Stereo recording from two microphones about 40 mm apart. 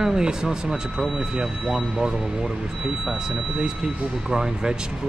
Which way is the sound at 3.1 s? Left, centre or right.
Right.